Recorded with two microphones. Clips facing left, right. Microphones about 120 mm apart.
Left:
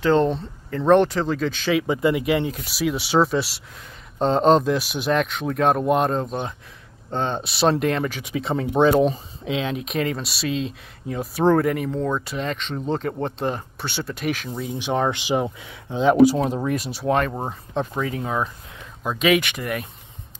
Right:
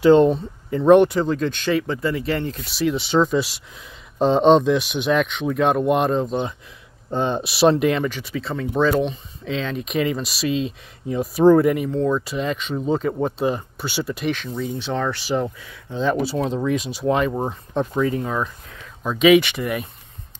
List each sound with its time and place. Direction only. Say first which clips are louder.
0.0 s speech: right 5 dB; 15° right (ahead or behind); by 1.9 s 5° left (ahead or behind)
1.9 s speech: left 3 dB; 15° left (ahead or behind); by 8.1 s centre (ahead or behind)
8.1 s speech: left 2 dB; 15° left (ahead or behind)
9.4 s speech: even; 10° left (ahead or behind)
9.8 s speech: right 3 dB; centre (ahead or behind); by 16.3 s 15° left (ahead or behind)
16.3 s speech: right 1 dB; 5° left (ahead or behind)